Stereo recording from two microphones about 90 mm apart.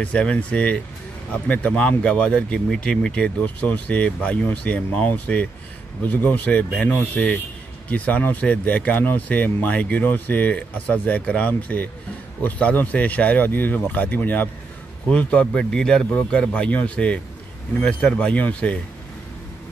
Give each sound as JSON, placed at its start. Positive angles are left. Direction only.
{"t": 0.0, "sound": "speech", "side_deg": 15}